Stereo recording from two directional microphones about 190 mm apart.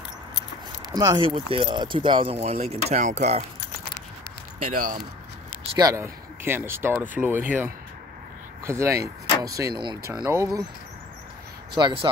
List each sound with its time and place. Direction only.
0.9 s speech: 20° right (ahead or behind)
4.6 s speech: 45° right (ahead or behind)
5.8 s speech: 15° right (ahead or behind)
11.7 s speech: 25° right (ahead or behind)